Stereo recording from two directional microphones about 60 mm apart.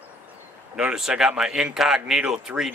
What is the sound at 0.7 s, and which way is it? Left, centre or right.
Speech, centre.